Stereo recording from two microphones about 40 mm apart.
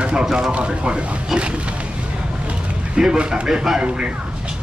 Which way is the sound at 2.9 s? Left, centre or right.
Right.